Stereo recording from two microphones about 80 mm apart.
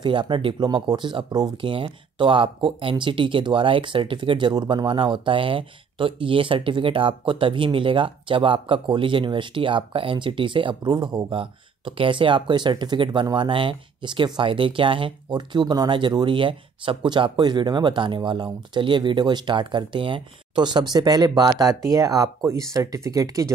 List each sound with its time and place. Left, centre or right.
0.0 s speech: right
1.6 s speech: right
20.9 s speech: right